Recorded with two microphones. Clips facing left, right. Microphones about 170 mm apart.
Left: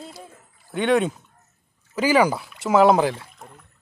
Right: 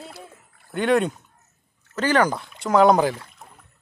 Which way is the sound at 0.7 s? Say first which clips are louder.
Even; centre (ahead or behind).